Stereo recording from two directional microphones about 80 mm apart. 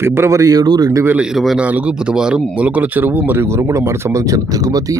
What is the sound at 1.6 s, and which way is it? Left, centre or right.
Speech, centre.